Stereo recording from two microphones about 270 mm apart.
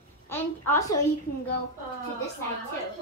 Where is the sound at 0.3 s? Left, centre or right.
Centre.